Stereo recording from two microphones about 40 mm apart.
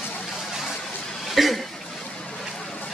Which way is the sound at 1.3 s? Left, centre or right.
Centre.